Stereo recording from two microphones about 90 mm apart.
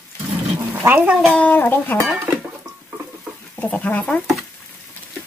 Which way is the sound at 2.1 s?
25° right (ahead or behind).